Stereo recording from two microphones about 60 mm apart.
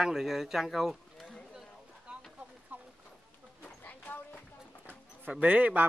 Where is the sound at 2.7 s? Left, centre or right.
Right.